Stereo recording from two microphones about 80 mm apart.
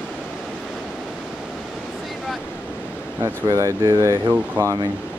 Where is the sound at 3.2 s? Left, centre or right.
Right.